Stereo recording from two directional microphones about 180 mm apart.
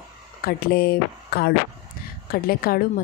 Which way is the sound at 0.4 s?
55° left (ahead or behind).